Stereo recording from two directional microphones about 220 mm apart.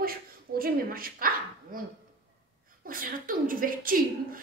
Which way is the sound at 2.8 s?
40° right (ahead or behind).